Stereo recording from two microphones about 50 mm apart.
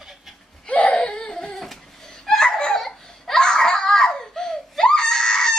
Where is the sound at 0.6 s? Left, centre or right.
Left.